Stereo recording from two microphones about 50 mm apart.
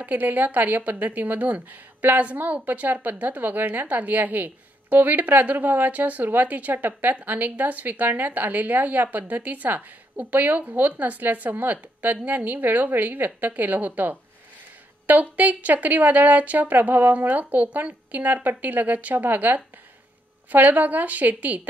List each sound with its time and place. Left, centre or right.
0.0 s speech: right